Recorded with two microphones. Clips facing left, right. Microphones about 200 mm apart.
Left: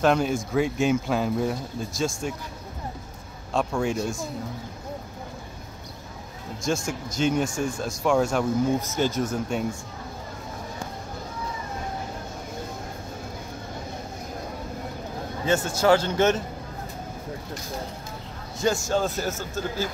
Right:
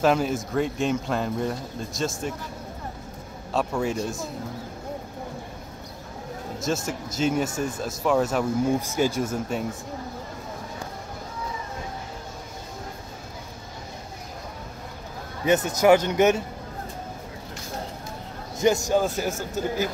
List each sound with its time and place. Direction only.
0.0 s speech: 5° right (ahead or behind)
3.5 s speech: 5° right (ahead or behind)
6.6 s a man's voice: 5° right (ahead or behind)
15.4 s a man's voice: 20° right (ahead or behind)
18.6 s a man's voice: 15° right (ahead or behind)